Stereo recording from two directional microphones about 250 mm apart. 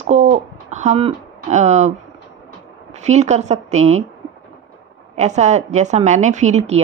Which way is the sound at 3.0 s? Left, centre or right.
Right.